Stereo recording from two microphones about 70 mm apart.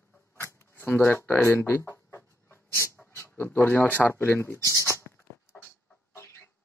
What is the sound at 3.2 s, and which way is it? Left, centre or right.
Speech, left.